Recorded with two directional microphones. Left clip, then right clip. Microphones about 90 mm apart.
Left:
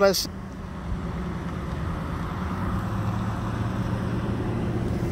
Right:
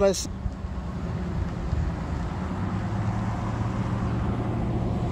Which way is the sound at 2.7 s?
90° left.